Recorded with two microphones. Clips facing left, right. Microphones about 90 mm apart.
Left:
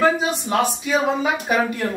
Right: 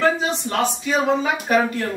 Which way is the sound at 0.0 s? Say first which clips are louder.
Left 1 dB; 10° left (ahead or behind).